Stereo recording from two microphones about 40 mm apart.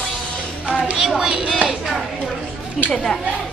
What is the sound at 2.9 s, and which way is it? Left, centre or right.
Speech, centre.